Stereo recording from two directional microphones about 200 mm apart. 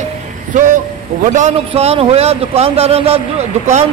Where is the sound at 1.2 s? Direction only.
35° right (ahead or behind).